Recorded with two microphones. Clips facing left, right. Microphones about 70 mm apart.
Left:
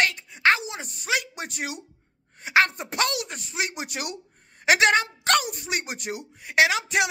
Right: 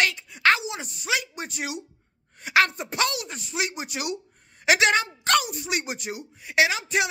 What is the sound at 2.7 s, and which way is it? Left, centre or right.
Speech, left.